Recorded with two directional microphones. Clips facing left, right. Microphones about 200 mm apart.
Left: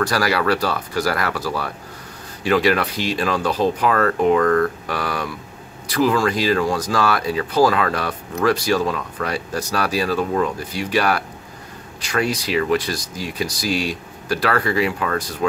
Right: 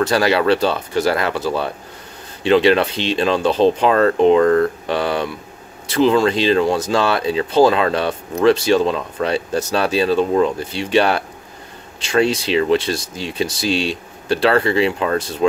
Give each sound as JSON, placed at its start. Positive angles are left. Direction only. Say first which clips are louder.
{"t": 0.0, "sound": "speech", "louder": "right 4 dB", "side_deg": -25}